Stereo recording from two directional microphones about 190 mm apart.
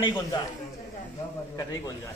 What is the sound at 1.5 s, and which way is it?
Speech, 20° left (ahead or behind).